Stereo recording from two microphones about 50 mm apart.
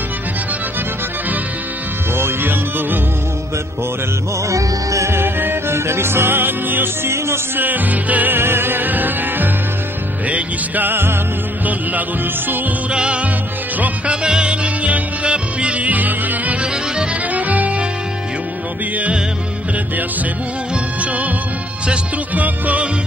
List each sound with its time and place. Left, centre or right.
2.1 s music: right
4.5 s music: right
5.1 s music: right
7.1 s music: right
7.6 s music: right
8.4 s music: right
10.9 s music: right
12.9 s music: right
13.7 s music: right
14.2 s music: centre
21.0 s music: right
22.3 s music: right